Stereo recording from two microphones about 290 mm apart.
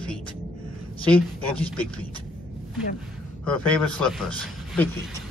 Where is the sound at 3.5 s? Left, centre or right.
Centre.